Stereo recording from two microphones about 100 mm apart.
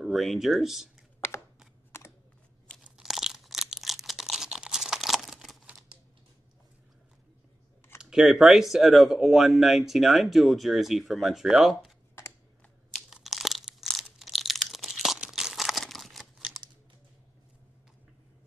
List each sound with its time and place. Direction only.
0.0 s speech: centre (ahead or behind)
1.9 s camera: 25° left (ahead or behind)
2.8 s crunch: 5° right (ahead or behind)
8.0 s speech: 5° right (ahead or behind)
12.9 s crunch: centre (ahead or behind)